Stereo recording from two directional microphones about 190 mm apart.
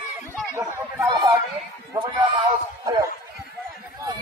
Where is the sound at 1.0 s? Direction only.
20° right (ahead or behind).